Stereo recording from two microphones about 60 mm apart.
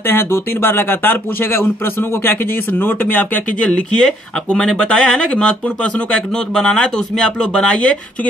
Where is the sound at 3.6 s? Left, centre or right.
Centre.